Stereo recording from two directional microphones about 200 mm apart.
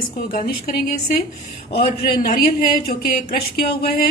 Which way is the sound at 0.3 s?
40° left (ahead or behind).